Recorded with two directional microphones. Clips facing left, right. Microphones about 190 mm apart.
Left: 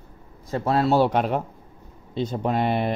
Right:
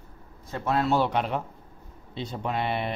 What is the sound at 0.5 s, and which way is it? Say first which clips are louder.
Speech: left 4 dB; 35° left (ahead or behind).